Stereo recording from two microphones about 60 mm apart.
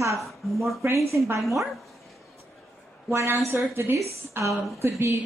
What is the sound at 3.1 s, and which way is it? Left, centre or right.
A woman's voice, right.